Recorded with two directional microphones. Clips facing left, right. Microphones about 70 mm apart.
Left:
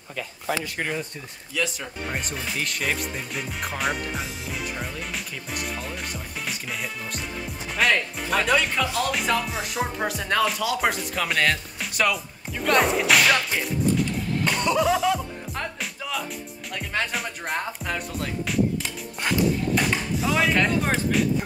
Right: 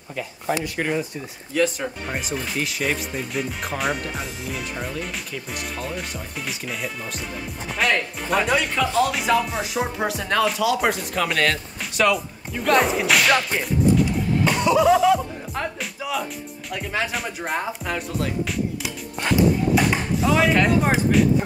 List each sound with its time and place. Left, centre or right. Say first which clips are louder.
0.7 s speech: right 4 dB; centre
1.5 s speech: right 7 dB; right
2.0 s speech: left 2 dB; centre